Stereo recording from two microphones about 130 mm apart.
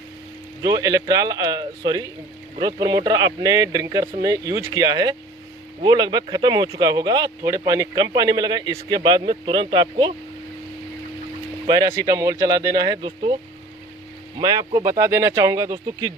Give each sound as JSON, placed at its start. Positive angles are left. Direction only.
{"t": 0.6, "sound": "speech", "side_deg": -30}
{"t": 11.6, "sound": "speech", "side_deg": -30}
{"t": 14.4, "sound": "speech", "side_deg": -30}
{"t": 14.9, "sound": "speech", "side_deg": -20}